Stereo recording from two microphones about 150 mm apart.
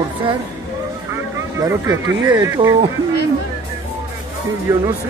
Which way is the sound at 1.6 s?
25° right (ahead or behind).